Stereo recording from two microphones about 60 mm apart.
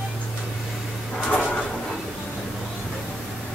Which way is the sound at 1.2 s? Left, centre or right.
Centre.